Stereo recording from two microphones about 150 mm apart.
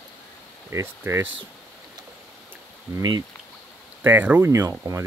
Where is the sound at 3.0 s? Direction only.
25° right (ahead or behind).